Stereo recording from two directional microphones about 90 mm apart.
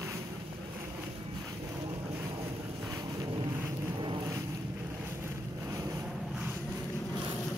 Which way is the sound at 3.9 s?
60° right (ahead or behind).